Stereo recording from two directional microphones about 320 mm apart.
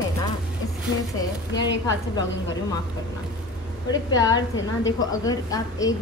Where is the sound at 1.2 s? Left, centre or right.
Centre.